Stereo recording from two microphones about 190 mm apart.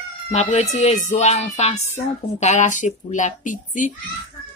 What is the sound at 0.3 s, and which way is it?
Speech, 35° left (ahead or behind).